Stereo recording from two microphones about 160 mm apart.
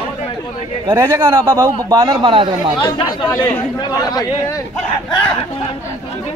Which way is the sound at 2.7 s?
30° left (ahead or behind).